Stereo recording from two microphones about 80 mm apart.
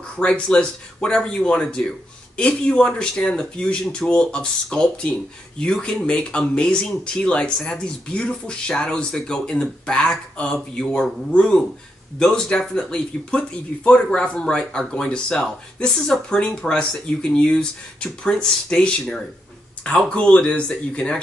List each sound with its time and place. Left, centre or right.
0.2 s speech: centre